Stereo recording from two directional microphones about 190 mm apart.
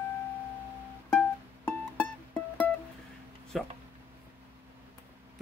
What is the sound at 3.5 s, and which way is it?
Speech, centre (ahead or behind).